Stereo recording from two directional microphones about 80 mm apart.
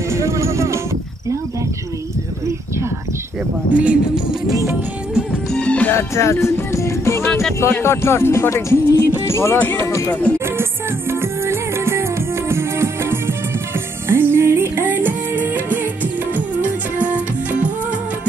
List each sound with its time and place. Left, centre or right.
0.1 s music: right
3.7 s music: centre
5.5 s music: centre
5.9 s music: left
9.6 s speech: left
10.4 s music: right